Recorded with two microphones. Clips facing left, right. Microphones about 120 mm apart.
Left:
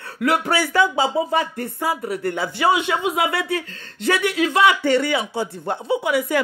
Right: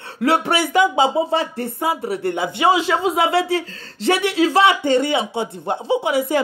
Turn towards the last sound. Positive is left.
turn(degrees=-25)  # may be behind; listen again after turning